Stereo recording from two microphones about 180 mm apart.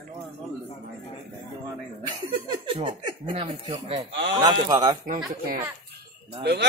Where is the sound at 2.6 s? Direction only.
30° right (ahead or behind).